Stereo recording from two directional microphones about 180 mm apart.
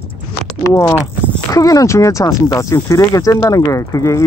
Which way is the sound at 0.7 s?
15° left (ahead or behind).